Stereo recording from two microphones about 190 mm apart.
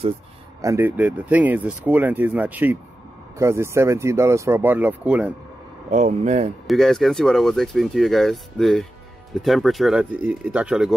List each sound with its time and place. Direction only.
0.6 s speech: 15° right (ahead or behind)
5.9 s speech: 40° right (ahead or behind)
6.7 s speech: centre (ahead or behind)